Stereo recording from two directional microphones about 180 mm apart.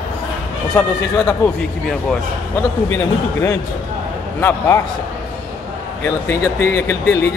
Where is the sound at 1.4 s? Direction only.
15° left (ahead or behind).